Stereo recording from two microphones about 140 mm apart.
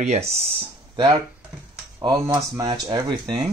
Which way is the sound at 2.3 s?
25° right (ahead or behind).